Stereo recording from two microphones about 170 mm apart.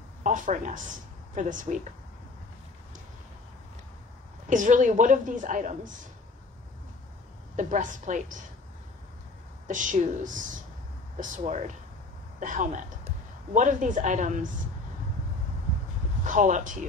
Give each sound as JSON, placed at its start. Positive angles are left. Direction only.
{"t": 0.2, "sound": "a woman's voice", "side_deg": -50}
{"t": 4.5, "sound": "a woman's voice", "side_deg": -50}
{"t": 7.5, "sound": "a woman's voice", "side_deg": -50}
{"t": 9.7, "sound": "a woman's voice", "side_deg": -50}
{"t": 16.3, "sound": "a woman's voice", "side_deg": -45}